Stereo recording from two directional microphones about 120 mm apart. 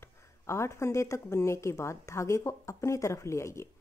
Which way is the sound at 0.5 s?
25° left (ahead or behind).